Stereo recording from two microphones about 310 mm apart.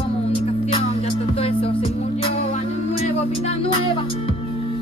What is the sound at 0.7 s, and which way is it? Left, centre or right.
Music, centre.